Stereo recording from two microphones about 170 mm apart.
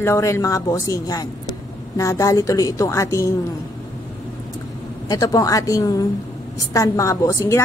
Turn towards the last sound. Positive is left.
turn(degrees=15)  # may be behind; listen again after turning